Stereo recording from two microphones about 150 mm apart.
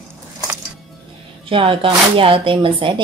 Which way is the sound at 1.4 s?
35° right (ahead or behind).